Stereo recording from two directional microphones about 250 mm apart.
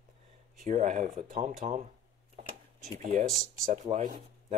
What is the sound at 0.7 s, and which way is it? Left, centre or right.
Speech, right.